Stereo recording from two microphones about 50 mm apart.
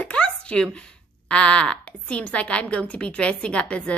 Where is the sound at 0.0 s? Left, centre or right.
Left.